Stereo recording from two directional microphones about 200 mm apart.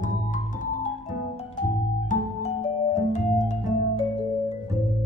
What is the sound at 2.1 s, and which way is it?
Music, 35° left (ahead or behind).